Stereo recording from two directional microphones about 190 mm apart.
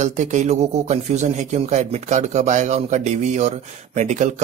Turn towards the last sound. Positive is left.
turn(degrees=-40)  # may be behind; listen again after turning